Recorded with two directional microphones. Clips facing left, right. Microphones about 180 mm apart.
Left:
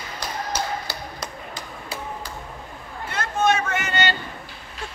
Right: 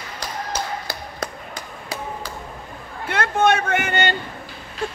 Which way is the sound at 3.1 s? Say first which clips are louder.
Right 3 dB; 60° right (ahead or behind).